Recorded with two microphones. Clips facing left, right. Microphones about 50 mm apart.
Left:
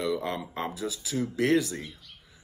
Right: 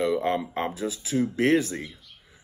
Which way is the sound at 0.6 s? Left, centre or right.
Right.